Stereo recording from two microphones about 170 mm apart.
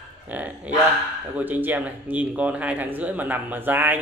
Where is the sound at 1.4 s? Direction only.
10° right (ahead or behind).